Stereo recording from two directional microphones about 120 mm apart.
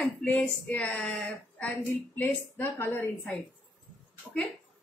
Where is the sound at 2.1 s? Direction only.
15° left (ahead or behind).